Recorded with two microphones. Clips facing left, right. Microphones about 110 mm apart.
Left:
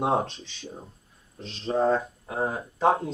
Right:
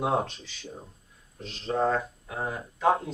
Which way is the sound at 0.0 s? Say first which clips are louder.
Left 2 dB; 30° left (ahead or behind).